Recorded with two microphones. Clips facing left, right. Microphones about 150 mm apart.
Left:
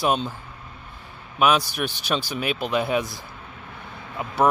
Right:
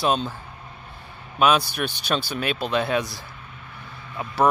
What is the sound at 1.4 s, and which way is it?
Speech, 5° left (ahead or behind).